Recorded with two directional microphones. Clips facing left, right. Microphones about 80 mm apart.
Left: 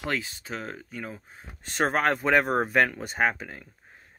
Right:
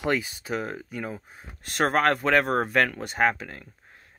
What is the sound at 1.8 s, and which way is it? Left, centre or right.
Speech, centre.